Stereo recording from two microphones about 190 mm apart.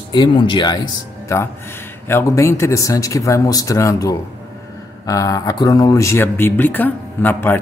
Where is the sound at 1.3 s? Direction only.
15° left (ahead or behind).